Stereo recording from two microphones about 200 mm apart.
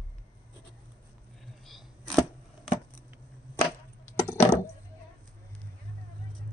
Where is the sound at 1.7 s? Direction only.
Centre (ahead or behind).